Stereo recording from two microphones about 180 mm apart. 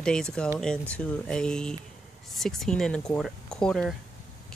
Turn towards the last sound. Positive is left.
turn(degrees=5)  # may be behind; listen again after turning